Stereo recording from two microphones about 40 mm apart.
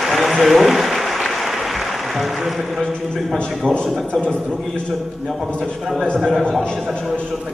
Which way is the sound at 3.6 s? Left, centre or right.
Left.